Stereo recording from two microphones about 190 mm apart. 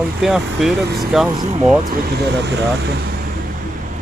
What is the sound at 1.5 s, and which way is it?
Speech, 35° right (ahead or behind).